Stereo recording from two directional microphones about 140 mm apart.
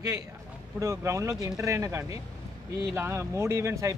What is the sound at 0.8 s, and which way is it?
Speech, 20° right (ahead or behind).